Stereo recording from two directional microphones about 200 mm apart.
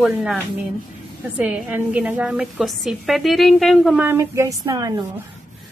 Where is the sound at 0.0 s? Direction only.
Centre (ahead or behind).